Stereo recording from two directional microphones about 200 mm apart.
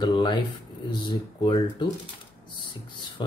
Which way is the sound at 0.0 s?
20° left (ahead or behind).